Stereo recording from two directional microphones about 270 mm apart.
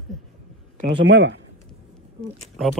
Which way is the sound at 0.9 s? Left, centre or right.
Right.